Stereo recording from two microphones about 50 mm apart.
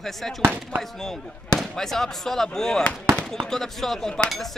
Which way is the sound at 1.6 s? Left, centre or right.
Centre.